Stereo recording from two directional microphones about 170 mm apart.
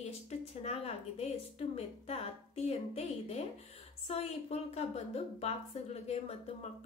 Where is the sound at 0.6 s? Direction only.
40° left (ahead or behind).